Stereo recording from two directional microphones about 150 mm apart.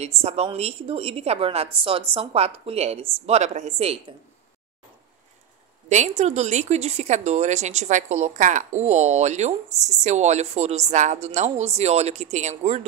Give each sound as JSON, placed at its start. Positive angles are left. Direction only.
{"t": 0.0, "sound": "a woman's voice", "side_deg": -45}
{"t": 5.9, "sound": "a woman's voice", "side_deg": -50}